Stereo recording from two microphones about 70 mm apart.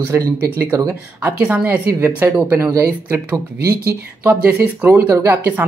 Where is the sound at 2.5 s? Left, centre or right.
Right.